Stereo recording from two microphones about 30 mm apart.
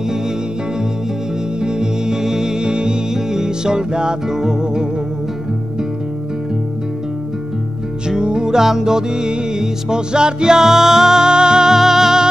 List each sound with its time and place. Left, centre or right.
1.6 s music: right
8.2 s music: right
10.6 s music: centre